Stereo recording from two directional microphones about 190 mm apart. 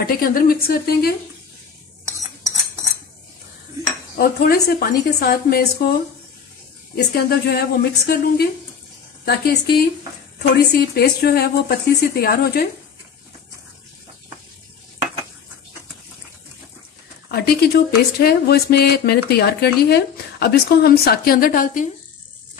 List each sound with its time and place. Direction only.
0.0 s speech: 50° left (ahead or behind)
2.0 s a sound: 15° right (ahead or behind)
4.2 s speech: 50° left (ahead or behind)
7.2 s speech: 55° left (ahead or behind)
17.3 s speech: 55° left (ahead or behind)